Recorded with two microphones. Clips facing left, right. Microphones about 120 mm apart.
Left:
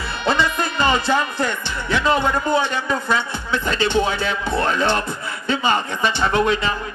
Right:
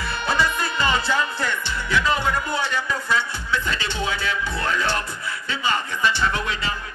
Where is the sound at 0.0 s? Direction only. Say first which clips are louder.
Left 3 dB; 25° left (ahead or behind).